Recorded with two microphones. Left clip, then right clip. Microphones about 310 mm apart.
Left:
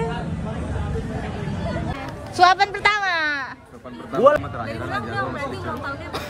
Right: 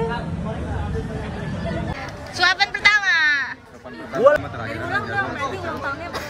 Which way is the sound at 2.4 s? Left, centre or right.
Centre.